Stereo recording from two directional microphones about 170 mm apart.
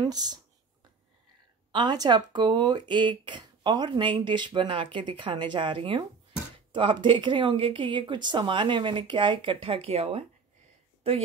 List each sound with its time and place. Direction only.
0.0 s speech: 25° right (ahead or behind)
1.7 s speech: 25° right (ahead or behind)